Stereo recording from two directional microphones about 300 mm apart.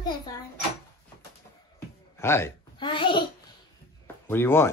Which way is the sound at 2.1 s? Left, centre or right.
Centre.